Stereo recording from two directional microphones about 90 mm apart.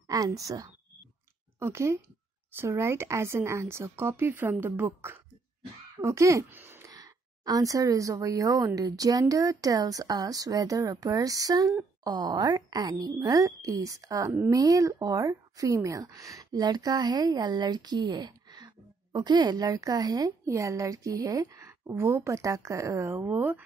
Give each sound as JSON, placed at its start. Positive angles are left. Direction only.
{"t": 0.1, "sound": "a woman's voice", "side_deg": -40}
{"t": 6.5, "sound": "a sound", "side_deg": -25}
{"t": 6.9, "sound": "speech", "side_deg": -45}
{"t": 23.1, "sound": "a woman's voice", "side_deg": -20}